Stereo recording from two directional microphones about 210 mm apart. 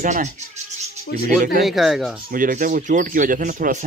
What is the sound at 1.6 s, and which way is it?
Speech, centre (ahead or behind).